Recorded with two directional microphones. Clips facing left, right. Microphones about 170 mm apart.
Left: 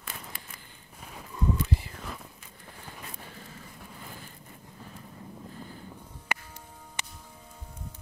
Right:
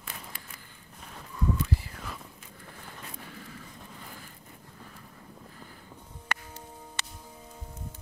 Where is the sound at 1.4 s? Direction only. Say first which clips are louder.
Left 1 dB; 20° left (ahead or behind).